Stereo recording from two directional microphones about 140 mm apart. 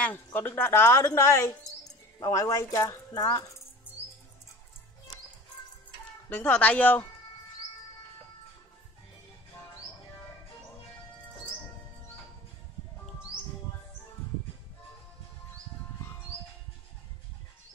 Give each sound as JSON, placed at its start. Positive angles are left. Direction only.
{"t": 0.0, "sound": "a woman's voice", "side_deg": 15}
{"t": 6.2, "sound": "a woman's voice", "side_deg": 10}